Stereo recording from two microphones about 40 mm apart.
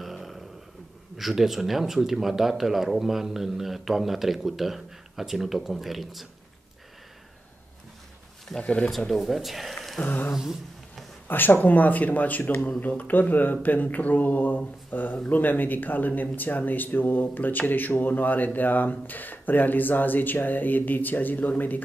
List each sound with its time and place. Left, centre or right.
0.0 s a sound: centre
1.1 s speech: centre
8.5 s speech: left
8.9 s speech: centre
10.0 s speech: left
10.3 s speech: centre
11.2 s a man's voice: left